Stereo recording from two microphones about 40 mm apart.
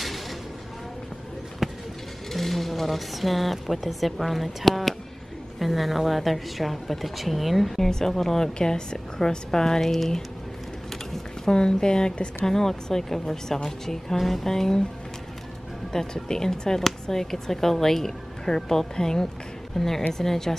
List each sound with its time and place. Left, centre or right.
1.6 s a sound: centre
2.3 s a woman's voice: centre
11.4 s a woman's voice: centre
15.9 s speech: centre